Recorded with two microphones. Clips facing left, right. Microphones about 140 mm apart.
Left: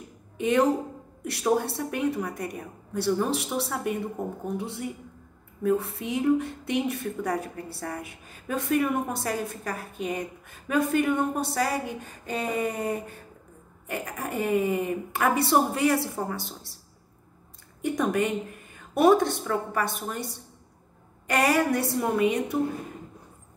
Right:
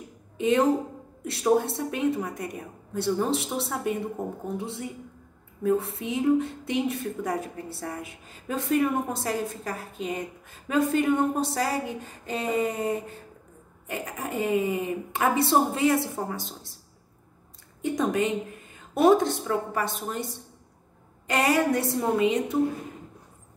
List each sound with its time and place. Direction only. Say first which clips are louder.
0.4 s a woman's voice: right 1 dB; 25° right (ahead or behind)
17.8 s speech: even; 25° right (ahead or behind)
21.3 s speech: even; 25° right (ahead or behind)